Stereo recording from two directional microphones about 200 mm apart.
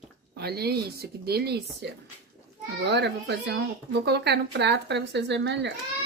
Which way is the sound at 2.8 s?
60° right (ahead or behind).